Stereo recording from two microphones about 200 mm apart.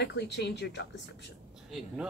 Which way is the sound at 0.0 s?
55° left (ahead or behind).